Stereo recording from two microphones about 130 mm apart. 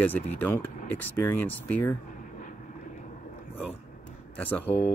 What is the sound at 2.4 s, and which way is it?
Vehicle, 80° left.